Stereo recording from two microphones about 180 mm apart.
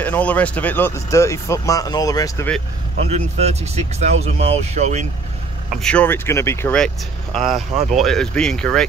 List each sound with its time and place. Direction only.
0.0 s speech: 10° left (ahead or behind)
3.1 s speech: 35° right (ahead or behind)
5.8 s speech: 5° left (ahead or behind)